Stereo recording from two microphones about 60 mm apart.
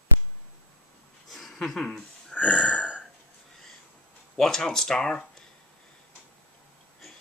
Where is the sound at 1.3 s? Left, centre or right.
Centre.